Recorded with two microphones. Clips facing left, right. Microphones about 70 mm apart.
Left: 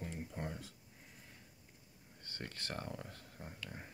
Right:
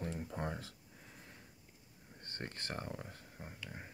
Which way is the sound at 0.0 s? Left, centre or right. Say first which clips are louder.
Right 3 dB; right.